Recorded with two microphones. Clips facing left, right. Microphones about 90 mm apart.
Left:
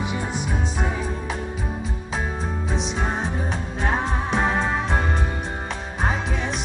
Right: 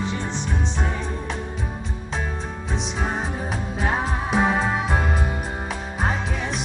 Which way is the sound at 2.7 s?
Centre (ahead or behind).